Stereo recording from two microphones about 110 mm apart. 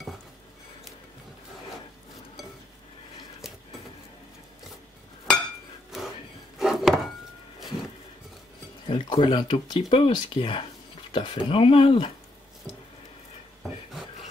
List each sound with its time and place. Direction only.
5.9 s a sound: centre (ahead or behind)
6.6 s chopping: centre (ahead or behind)
8.8 s speech: 50° left (ahead or behind)